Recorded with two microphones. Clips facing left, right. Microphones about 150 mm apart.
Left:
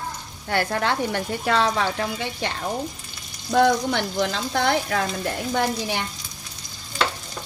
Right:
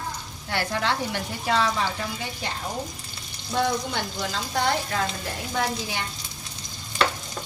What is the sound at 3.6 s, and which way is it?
Speech, 75° left (ahead or behind).